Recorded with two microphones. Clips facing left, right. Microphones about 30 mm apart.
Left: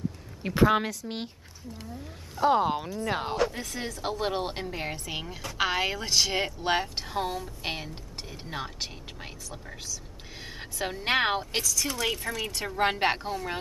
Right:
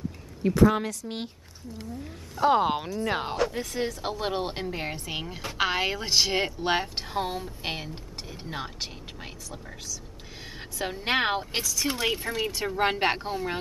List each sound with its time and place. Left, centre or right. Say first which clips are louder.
0.6 s a woman's voice: right 1 dB; left
1.0 s speech: right 1 dB; centre
2.3 s speech: right 1 dB; centre
2.6 s a woman's voice: right 2 dB; centre
12.0 s speech: right 2 dB; centre
12.5 s speech: left 1 dB; centre